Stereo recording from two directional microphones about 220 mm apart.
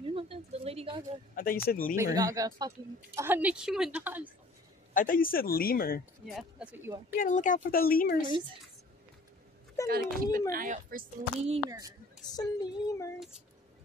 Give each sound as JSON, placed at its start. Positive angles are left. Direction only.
{"t": 0.0, "sound": "a sound", "side_deg": -25}
{"t": 1.3, "sound": "speech", "side_deg": 40}
{"t": 2.1, "sound": "a woman's voice", "side_deg": -15}
{"t": 4.9, "sound": "speech", "side_deg": 40}
{"t": 6.2, "sound": "a woman's voice", "side_deg": -5}
{"t": 7.2, "sound": "speech", "side_deg": 35}
{"t": 9.8, "sound": "a woman's voice", "side_deg": -40}
{"t": 12.3, "sound": "child singing", "side_deg": 15}